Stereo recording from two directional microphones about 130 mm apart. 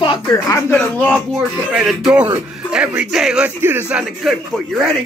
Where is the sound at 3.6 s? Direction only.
15° right (ahead or behind).